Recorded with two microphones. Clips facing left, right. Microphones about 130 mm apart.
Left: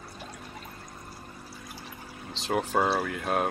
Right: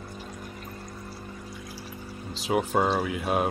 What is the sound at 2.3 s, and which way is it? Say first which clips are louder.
Speech: right 2 dB; centre (ahead or behind).